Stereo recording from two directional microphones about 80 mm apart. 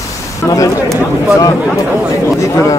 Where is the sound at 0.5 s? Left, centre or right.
Left.